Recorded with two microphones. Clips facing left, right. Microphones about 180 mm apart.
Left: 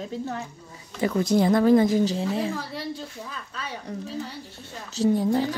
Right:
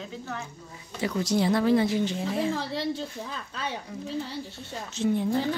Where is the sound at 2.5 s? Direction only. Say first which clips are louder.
Right 3 dB; 30° right (ahead or behind).